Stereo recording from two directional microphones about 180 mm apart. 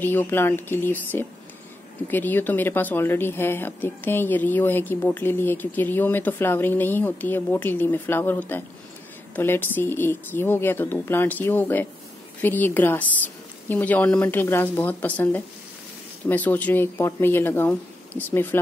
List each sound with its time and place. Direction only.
0.0 s speech: 10° left (ahead or behind)